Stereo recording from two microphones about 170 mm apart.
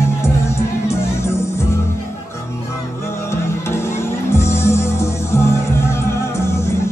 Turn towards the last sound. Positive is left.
turn(degrees=15)  # may be behind; listen again after turning